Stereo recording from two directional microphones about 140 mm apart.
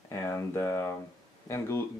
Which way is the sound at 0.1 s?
20° left (ahead or behind).